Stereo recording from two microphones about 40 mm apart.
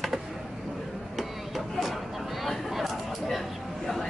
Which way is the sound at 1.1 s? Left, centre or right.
Centre.